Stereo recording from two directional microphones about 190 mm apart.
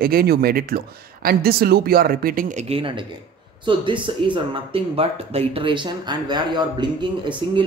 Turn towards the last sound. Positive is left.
turn(degrees=-25)  # may be behind; listen again after turning